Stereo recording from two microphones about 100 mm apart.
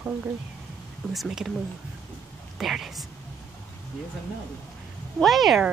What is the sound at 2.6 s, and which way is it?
Speech, centre (ahead or behind).